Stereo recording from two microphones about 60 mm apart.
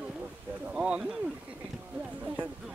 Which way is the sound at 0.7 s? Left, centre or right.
Centre.